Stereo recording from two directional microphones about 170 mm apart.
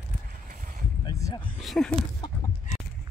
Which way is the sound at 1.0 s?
20° left (ahead or behind).